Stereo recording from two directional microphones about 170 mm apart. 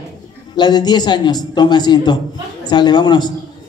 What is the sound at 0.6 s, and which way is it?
A man's voice, 25° left (ahead or behind).